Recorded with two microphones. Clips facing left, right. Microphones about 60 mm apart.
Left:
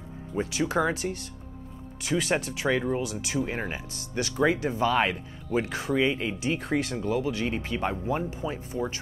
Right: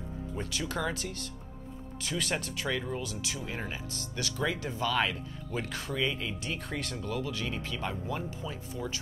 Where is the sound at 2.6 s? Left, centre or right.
Left.